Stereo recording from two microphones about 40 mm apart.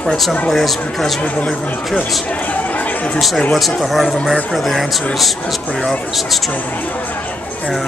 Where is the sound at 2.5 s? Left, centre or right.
Left.